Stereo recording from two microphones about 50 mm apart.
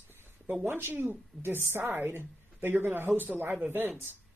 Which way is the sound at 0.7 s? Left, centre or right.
Right.